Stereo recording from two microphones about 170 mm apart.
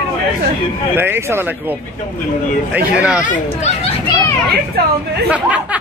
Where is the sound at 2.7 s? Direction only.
5° right (ahead or behind).